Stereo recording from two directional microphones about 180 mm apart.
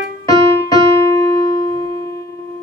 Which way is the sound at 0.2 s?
20° left (ahead or behind).